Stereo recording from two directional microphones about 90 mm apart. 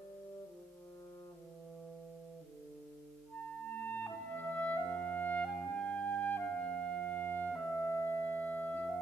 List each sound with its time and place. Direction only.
3.8 s clarinet: 20° left (ahead or behind)